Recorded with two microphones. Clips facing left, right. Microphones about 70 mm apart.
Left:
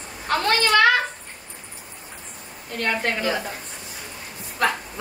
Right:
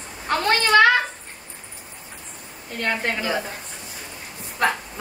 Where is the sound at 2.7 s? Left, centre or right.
Centre.